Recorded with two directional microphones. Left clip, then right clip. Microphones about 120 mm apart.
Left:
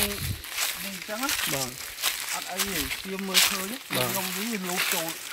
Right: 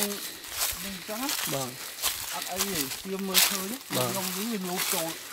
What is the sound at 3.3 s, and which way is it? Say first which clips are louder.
Speech: left 3 dB; 10° right (ahead or behind).